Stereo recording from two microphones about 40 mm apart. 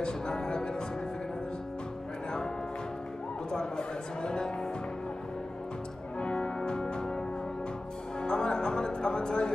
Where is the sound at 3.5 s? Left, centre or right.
Centre.